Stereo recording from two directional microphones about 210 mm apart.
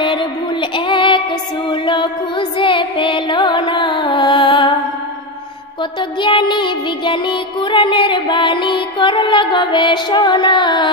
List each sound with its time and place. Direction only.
0.0 s female singing: 25° left (ahead or behind)
1.7 s music: 25° left (ahead or behind)
5.9 s music: 25° left (ahead or behind)